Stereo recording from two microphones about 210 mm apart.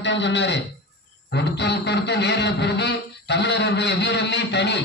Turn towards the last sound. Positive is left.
turn(degrees=55)  # may be behind; listen again after turning